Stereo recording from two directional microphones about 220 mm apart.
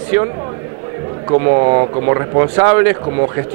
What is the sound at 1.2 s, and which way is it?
A man's voice, 25° right (ahead or behind).